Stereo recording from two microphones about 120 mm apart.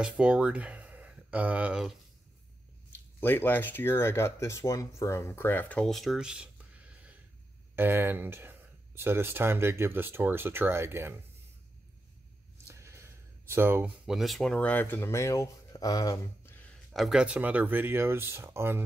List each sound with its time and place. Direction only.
0.2 s speech: 10° right (ahead or behind)
3.2 s speech: 15° left (ahead or behind); by 6.5 s 5° right (ahead or behind)
7.7 s speech: 20° right (ahead or behind)
12.6 s a sound: 25° right (ahead or behind)
14.0 s speech: centre (ahead or behind); by 16.5 s 30° left (ahead or behind)
16.5 s a sound: 10° left (ahead or behind)
16.9 s speech: 5° right (ahead or behind); by 18.8 s 20° right (ahead or behind)